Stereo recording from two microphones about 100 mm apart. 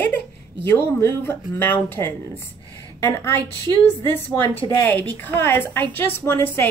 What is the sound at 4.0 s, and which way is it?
A woman's voice, 20° left (ahead or behind).